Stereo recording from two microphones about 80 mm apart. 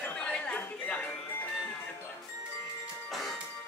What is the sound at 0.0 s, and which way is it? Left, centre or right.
Chatter, centre.